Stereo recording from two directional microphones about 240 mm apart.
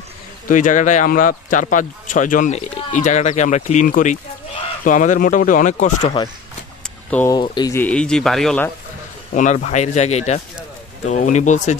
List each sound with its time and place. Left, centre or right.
0.5 s speech: left
7.1 s speech: centre
7.3 s speech: centre
9.3 s speech: left